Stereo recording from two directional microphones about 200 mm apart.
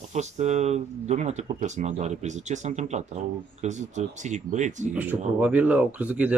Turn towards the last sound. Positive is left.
turn(degrees=-5)  # may be behind; listen again after turning